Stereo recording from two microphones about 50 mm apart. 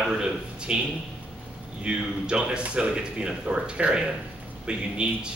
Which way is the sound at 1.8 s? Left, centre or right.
Centre.